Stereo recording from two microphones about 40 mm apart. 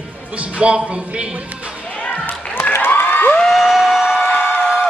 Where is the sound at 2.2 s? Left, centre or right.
Left.